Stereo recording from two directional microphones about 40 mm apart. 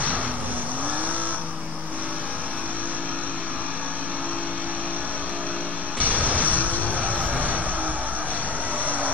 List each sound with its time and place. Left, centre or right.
5.9 s music: right
7.1 s vehicle: right